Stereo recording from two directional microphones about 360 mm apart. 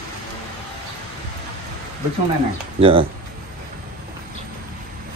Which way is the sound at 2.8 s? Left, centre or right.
Centre.